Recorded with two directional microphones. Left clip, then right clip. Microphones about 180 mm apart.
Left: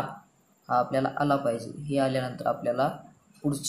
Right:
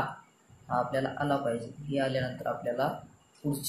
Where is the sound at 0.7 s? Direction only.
15° left (ahead or behind).